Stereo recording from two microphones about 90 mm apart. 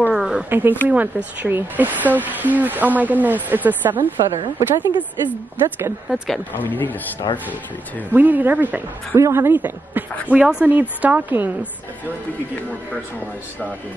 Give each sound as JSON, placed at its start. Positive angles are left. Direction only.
{"t": 0.1, "sound": "a sound", "side_deg": -5}
{"t": 0.5, "sound": "speech", "side_deg": -20}
{"t": 4.6, "sound": "speech", "side_deg": -50}
{"t": 6.0, "sound": "speech", "side_deg": 0}
{"t": 6.5, "sound": "speech", "side_deg": 20}
{"t": 7.3, "sound": "speech", "side_deg": 70}
{"t": 8.1, "sound": "speech", "side_deg": -20}